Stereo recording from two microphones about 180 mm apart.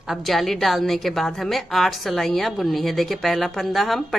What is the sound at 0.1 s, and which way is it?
A woman's voice, centre (ahead or behind).